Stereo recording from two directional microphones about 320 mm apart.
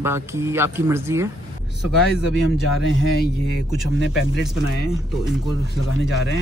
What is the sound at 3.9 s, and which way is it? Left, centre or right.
Speech, left.